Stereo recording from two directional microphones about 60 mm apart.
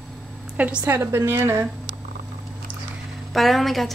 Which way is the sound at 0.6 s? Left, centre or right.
Right.